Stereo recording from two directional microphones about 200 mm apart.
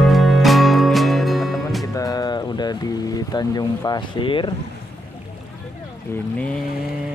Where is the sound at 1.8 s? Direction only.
20° left (ahead or behind).